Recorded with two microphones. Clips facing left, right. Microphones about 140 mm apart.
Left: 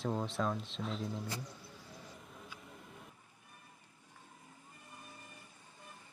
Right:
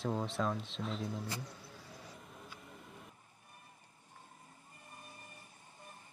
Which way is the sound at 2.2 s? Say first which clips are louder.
Even; centre (ahead or behind).